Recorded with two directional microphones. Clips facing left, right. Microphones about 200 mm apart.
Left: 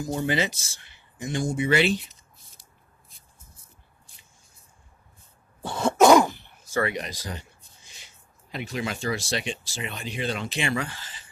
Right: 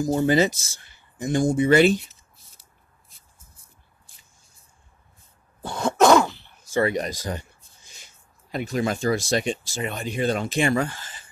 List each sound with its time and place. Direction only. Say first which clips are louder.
0.2 s speech: right 6 dB; 40° right (ahead or behind)
5.6 s throat clearing: even; 5° left (ahead or behind)
6.9 s speech: right 6 dB; 45° right (ahead or behind)